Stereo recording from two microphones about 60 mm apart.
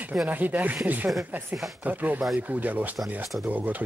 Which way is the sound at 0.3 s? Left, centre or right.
Right.